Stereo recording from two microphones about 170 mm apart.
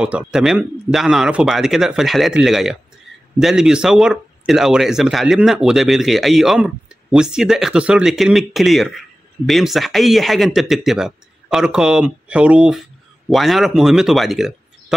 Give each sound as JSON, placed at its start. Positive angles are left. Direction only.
{"t": 0.0, "sound": "speech", "side_deg": -5}